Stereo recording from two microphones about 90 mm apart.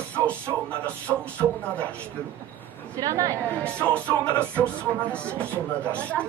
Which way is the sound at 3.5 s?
15° left (ahead or behind).